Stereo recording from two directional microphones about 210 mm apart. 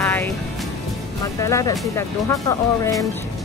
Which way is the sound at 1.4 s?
15° left (ahead or behind).